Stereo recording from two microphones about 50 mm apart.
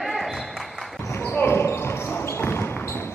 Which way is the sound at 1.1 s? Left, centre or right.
Left.